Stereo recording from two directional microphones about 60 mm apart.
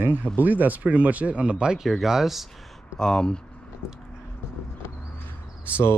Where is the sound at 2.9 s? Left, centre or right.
Centre.